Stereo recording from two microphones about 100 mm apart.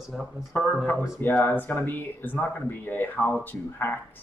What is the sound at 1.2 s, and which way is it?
Speech, 15° left (ahead or behind).